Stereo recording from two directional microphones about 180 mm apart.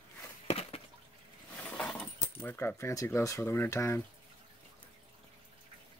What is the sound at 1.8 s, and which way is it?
Speech, 10° left (ahead or behind).